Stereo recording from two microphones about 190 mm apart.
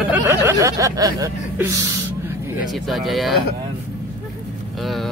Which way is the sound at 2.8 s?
Centre (ahead or behind).